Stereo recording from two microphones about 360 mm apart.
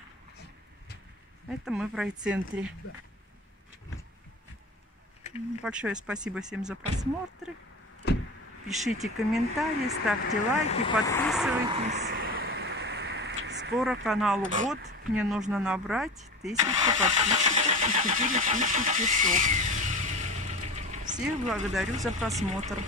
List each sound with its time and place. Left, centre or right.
1.6 s speech: centre
5.6 s speech: centre
8.6 s speech: centre
10.7 s speech: centre
11.6 s a sound: centre
13.7 s speech: centre
14.4 s speech: right
15.1 s speech: centre
21.2 s speech: centre